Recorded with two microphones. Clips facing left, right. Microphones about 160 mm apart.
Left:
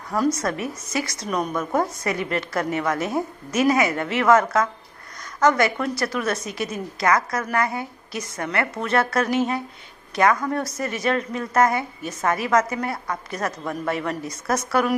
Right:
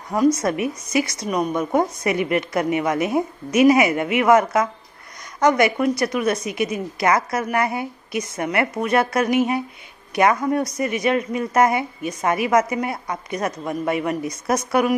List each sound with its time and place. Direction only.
0.4 s a woman's voice: 20° right (ahead or behind)